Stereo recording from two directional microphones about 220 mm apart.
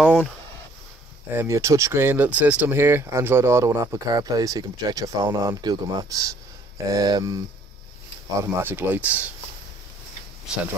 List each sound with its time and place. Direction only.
0.0 s speech: 5° right (ahead or behind)
1.3 s speech: 10° right (ahead or behind)
10.5 s speech: 5° right (ahead or behind)